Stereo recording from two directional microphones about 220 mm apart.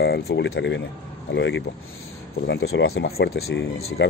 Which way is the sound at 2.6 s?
70° left (ahead or behind).